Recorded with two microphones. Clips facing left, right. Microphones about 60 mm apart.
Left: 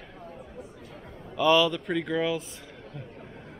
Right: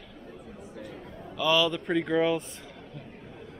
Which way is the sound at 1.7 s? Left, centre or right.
Centre.